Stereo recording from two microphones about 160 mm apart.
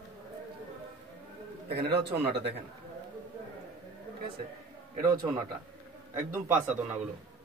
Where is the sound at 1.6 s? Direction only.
90° right.